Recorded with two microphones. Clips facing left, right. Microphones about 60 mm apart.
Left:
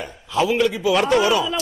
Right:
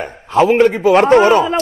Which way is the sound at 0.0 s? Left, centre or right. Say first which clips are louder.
Right 8 dB; right.